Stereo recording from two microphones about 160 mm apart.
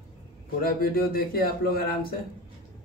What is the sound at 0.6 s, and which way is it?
Speech, 65° left (ahead or behind).